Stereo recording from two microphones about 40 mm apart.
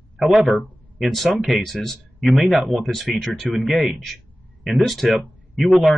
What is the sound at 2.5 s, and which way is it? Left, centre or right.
Speech, right.